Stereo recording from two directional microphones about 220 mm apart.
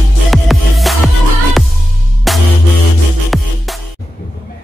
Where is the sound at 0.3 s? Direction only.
Centre (ahead or behind).